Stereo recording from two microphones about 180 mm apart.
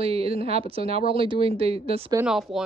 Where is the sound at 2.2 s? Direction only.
Centre (ahead or behind).